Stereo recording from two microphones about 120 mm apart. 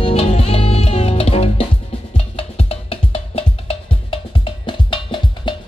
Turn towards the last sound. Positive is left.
turn(degrees=40)  # may be behind; listen again after turning